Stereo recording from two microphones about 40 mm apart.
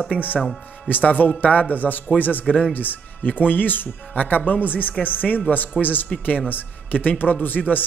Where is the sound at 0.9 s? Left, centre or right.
Left.